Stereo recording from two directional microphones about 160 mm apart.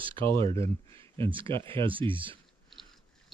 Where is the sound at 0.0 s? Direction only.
30° right (ahead or behind).